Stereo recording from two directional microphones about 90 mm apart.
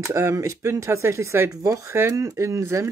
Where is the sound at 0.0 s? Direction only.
35° right (ahead or behind).